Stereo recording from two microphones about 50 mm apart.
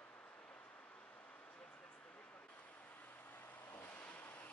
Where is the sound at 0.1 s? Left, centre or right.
Left.